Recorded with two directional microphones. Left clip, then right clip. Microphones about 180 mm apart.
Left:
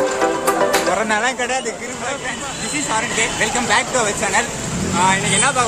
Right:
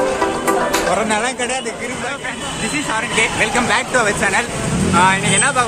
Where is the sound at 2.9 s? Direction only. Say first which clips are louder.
Right 2 dB; 10° left (ahead or behind).